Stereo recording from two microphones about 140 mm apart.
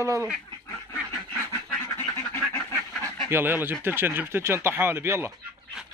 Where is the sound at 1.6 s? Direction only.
15° left (ahead or behind).